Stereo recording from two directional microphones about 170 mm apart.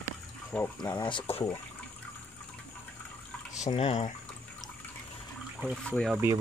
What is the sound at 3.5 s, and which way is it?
Speech, 40° left (ahead or behind).